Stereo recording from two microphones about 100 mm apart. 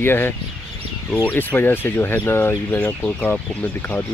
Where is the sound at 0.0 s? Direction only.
20° left (ahead or behind).